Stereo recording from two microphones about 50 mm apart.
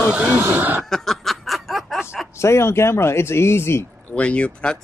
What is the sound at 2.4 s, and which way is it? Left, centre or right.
Speech, left.